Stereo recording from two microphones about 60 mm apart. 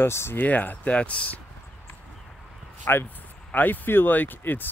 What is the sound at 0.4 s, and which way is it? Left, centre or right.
Speech, left.